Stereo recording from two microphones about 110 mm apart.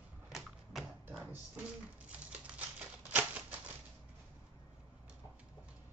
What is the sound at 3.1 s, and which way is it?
Typewriter, 15° right (ahead or behind).